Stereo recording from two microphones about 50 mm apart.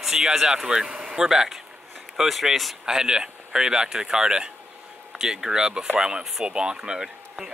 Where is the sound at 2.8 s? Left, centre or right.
Centre.